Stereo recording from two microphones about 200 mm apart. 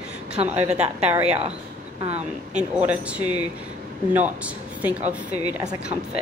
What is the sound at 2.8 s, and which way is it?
Speech, 5° right (ahead or behind).